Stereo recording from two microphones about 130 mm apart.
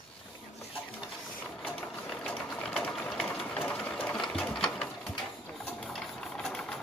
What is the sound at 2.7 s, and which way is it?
Sewing machine, 10° left (ahead or behind).